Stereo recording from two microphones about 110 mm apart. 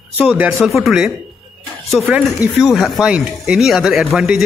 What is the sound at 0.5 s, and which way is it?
Speech, centre (ahead or behind).